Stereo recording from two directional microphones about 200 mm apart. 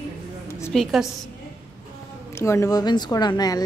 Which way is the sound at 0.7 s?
Centre (ahead or behind).